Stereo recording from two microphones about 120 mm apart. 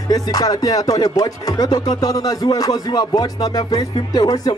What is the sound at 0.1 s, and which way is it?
A man's voice, 30° left (ahead or behind).